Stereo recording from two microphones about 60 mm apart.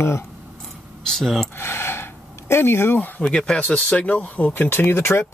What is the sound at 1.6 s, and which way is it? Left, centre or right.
Pant, left.